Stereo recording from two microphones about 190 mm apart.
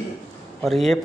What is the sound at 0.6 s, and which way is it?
Speech, centre (ahead or behind).